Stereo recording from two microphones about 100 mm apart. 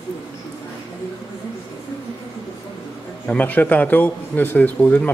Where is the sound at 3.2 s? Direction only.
15° left (ahead or behind).